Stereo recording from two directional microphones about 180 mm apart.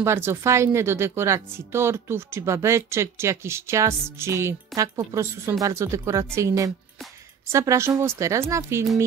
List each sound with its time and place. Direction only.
0.0 s a woman's voice: 15° right (ahead or behind)